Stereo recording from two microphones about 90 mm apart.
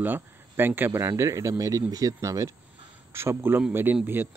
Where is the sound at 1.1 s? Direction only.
35° right (ahead or behind).